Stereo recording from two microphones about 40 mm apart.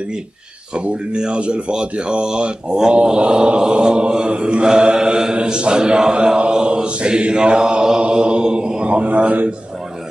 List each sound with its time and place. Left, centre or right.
0.7 s speech: right
6.1 s mantra: right
8.8 s a man's voice: right